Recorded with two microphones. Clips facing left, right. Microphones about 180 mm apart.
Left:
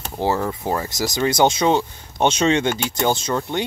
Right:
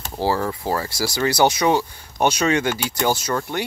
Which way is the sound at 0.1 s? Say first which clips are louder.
Even; 20° left (ahead or behind).